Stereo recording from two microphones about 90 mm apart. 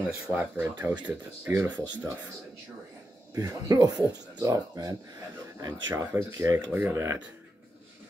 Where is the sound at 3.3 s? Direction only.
40° right (ahead or behind).